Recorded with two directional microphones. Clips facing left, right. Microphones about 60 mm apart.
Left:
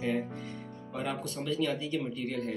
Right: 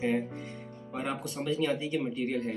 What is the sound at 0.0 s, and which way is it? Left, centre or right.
Music, right.